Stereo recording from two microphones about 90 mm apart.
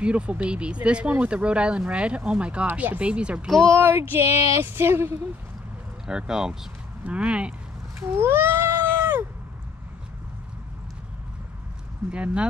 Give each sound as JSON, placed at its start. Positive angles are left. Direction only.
{"t": 0.0, "sound": "speech", "side_deg": -15}
{"t": 3.7, "sound": "speech", "side_deg": -30}
{"t": 6.0, "sound": "speech", "side_deg": -10}
{"t": 8.0, "sound": "a sound", "side_deg": -25}
{"t": 12.1, "sound": "speech", "side_deg": -15}